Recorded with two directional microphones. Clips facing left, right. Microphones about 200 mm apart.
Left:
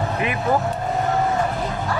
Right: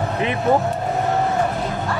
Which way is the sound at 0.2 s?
25° right (ahead or behind).